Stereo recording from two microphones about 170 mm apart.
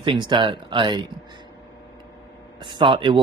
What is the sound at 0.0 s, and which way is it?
Speech, 30° right (ahead or behind).